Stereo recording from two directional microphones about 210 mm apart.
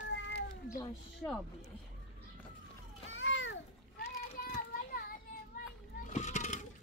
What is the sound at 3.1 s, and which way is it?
Children playing, 65° left (ahead or behind).